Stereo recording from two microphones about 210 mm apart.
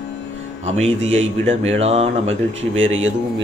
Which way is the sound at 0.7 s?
30° right (ahead or behind).